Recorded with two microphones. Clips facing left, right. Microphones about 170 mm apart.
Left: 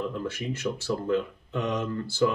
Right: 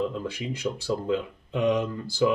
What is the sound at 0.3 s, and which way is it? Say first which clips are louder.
Speech: even; 15° right (ahead or behind).